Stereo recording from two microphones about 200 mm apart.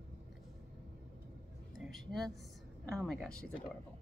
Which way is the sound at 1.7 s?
Centre (ahead or behind).